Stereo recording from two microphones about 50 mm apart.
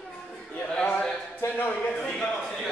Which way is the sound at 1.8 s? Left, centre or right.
Left.